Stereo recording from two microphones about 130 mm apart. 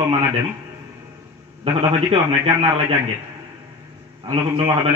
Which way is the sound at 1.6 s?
50° right (ahead or behind).